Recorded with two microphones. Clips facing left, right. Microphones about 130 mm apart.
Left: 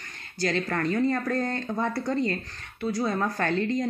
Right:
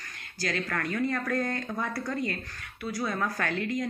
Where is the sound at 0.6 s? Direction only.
25° left (ahead or behind).